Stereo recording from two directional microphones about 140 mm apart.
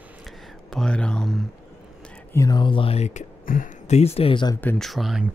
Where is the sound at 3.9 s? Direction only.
50° left (ahead or behind); by 4.6 s 30° left (ahead or behind).